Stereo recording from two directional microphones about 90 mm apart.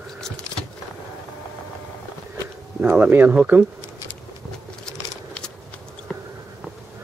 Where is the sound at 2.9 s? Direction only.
20° right (ahead or behind).